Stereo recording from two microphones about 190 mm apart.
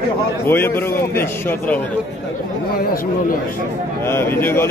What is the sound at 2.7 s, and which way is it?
Speech, 50° left (ahead or behind).